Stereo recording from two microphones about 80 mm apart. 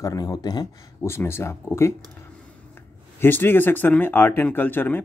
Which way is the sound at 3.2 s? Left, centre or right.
Left.